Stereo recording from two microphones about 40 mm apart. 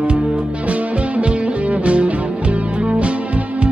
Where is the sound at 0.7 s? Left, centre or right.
Right.